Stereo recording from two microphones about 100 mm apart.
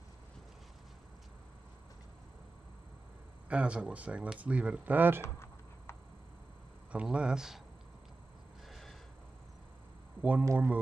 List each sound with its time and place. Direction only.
3.4 s speech: 10° right (ahead or behind)
5.2 s a sound: 25° left (ahead or behind)
6.9 s speech: 10° right (ahead or behind)
8.6 s snort: centre (ahead or behind)
10.4 s speech: 30° right (ahead or behind)